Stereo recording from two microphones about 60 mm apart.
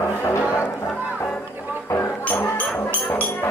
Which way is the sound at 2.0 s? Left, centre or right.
Left.